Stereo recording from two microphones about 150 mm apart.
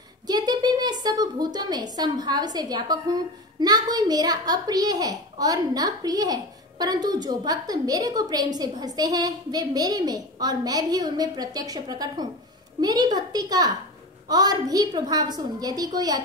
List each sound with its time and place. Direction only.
0.3 s a woman's voice: 25° right (ahead or behind)